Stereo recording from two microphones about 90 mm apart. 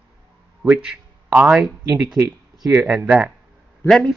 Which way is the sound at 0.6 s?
20° right (ahead or behind).